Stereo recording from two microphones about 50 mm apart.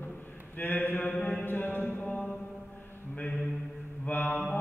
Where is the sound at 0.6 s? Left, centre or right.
Left.